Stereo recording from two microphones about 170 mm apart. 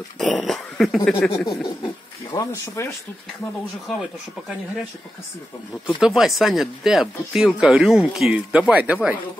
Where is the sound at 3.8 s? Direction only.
Centre (ahead or behind).